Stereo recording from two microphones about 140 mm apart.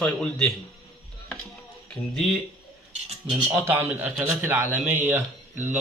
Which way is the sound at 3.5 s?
15° right (ahead or behind).